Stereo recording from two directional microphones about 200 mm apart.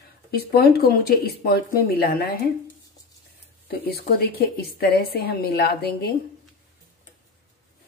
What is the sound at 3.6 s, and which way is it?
A woman's voice, 50° left (ahead or behind).